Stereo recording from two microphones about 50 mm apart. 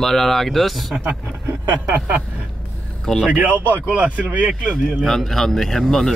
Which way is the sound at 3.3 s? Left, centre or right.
Right.